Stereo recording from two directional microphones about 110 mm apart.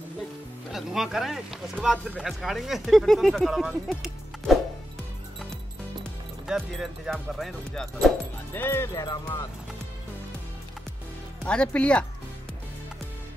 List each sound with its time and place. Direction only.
0.7 s speech: 5° right (ahead or behind)
6.4 s speech: centre (ahead or behind)
8.5 s speech: 20° left (ahead or behind)
9.0 s speech: 40° left (ahead or behind)
11.4 s speech: 10° left (ahead or behind)